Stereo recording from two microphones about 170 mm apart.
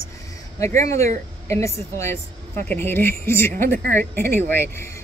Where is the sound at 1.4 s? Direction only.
15° left (ahead or behind).